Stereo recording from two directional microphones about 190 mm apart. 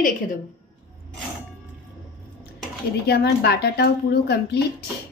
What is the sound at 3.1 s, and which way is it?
Speech, 60° left (ahead or behind).